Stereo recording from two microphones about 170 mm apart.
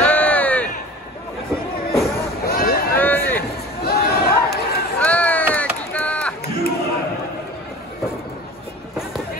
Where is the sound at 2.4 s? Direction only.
60° left (ahead or behind).